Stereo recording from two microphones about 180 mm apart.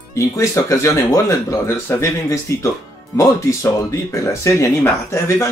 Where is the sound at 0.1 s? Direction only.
15° left (ahead or behind).